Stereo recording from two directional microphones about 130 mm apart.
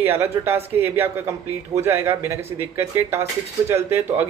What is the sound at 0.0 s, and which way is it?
Speech, 20° right (ahead or behind).